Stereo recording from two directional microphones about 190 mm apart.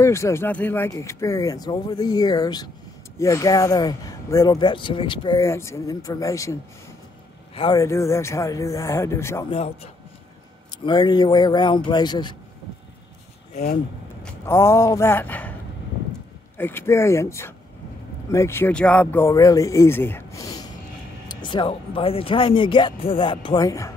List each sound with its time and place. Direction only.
0.0 s speech: 15° left (ahead or behind)
7.5 s a man's voice: 25° left (ahead or behind)
7.8 s speech: 15° left (ahead or behind)
9.5 s a man's voice: 30° left (ahead or behind)
10.9 s speech: 20° left (ahead or behind)
14.2 s speech: 15° left (ahead or behind)
16.5 s speech: 10° left (ahead or behind)